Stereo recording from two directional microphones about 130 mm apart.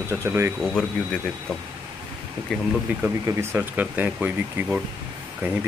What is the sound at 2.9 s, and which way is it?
Speech, 10° right (ahead or behind).